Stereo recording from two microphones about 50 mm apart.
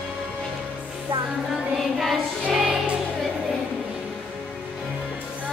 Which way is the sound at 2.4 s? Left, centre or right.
Centre.